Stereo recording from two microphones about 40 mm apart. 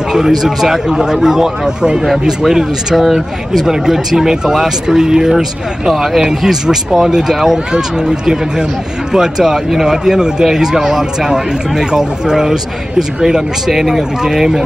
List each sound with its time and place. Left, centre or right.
0.1 s a man's voice: centre